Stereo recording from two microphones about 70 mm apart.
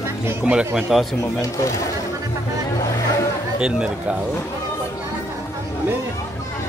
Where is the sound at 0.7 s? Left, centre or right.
Centre.